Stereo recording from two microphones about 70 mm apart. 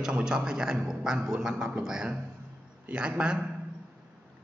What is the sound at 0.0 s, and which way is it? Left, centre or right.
A man's voice, centre.